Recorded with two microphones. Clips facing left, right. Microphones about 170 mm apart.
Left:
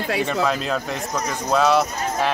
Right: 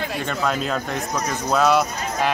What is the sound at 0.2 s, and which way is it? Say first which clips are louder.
Speech: left 1 dB; centre (ahead or behind).